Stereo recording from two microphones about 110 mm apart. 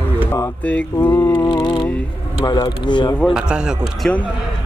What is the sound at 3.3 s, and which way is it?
Speech, 5° right (ahead or behind).